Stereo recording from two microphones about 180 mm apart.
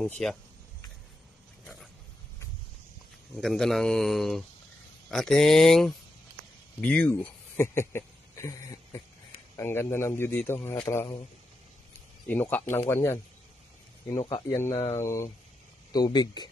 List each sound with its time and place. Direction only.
0.0 s speech: 5° left (ahead or behind)
3.3 s speech: centre (ahead or behind)
14.5 s speech: 15° left (ahead or behind)